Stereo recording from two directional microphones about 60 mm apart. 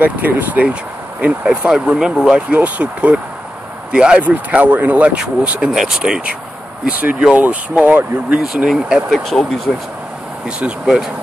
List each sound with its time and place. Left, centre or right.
0.0 s speech: right; by 2.4 s centre
2.5 s speech: right
4.2 s speech: right
5.7 s speech: centre
6.9 s speech: right
8.6 s speech: centre
10.4 s speech: centre